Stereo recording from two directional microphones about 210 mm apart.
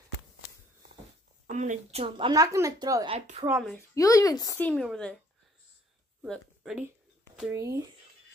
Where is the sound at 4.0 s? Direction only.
15° left (ahead or behind).